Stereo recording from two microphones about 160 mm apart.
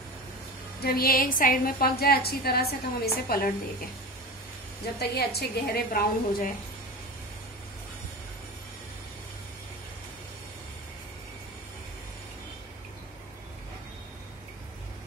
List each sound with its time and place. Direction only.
0.8 s a woman's voice: 70° left (ahead or behind)
4.9 s a woman's voice: 85° left